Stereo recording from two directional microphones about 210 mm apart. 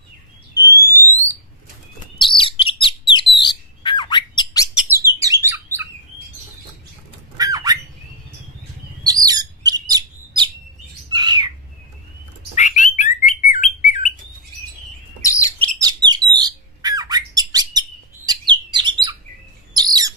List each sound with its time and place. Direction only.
2.1 s chirp: 25° left (ahead or behind)
2.8 s bird: 20° left (ahead or behind)
4.7 s bird: 10° right (ahead or behind)
7.3 s squawk: 15° right (ahead or behind)
9.0 s bird: 20° right (ahead or behind)
12.5 s bird: 35° left (ahead or behind)
15.2 s chirp: 15° left (ahead or behind)
15.8 s squawk: 20° right (ahead or behind)
18.5 s bird: 20° right (ahead or behind)